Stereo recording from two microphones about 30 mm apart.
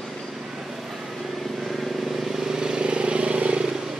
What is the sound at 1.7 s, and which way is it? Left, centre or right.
Vehicle, centre.